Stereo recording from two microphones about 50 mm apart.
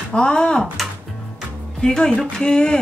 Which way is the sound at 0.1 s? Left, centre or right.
Centre.